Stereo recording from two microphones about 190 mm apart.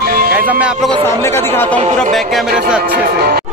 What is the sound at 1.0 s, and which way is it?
Speech, 10° left (ahead or behind).